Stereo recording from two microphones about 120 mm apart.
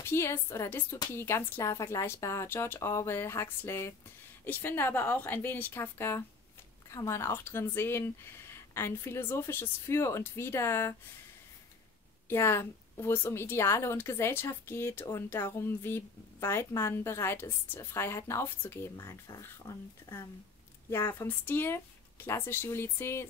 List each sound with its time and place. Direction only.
0.0 s a woman's voice: 20° left (ahead or behind)
12.3 s a woman's voice: 20° left (ahead or behind)
20.9 s a woman's voice: 20° left (ahead or behind)